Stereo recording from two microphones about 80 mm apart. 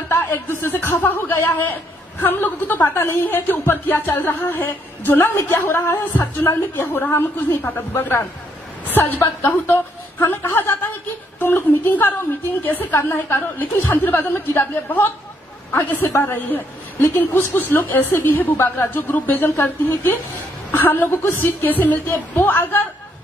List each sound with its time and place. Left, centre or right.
0.1 s a woman's voice: left